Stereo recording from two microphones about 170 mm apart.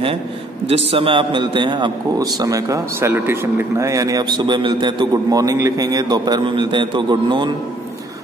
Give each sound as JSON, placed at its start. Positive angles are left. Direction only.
{"t": 0.7, "sound": "a man's voice", "side_deg": -35}